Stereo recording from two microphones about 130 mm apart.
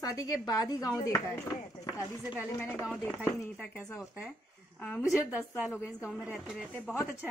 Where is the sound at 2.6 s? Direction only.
15° left (ahead or behind).